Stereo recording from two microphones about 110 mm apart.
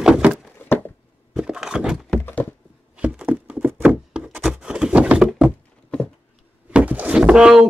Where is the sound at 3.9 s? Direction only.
10° right (ahead or behind).